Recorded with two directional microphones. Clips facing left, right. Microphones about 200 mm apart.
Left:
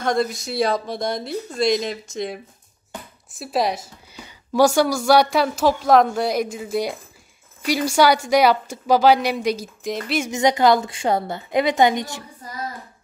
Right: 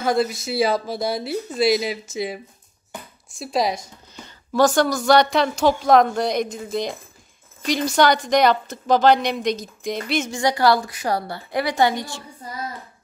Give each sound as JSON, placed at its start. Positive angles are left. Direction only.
{"t": 0.0, "sound": "a woman's voice", "side_deg": -5}
{"t": 10.2, "sound": "a woman's voice", "side_deg": 20}